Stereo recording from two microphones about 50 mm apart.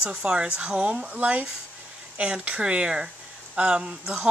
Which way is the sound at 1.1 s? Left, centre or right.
Right.